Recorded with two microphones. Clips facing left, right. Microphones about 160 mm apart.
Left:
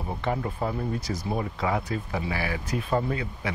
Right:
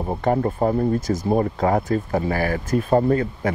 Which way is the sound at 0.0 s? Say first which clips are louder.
Right 8 dB; 45° right (ahead or behind).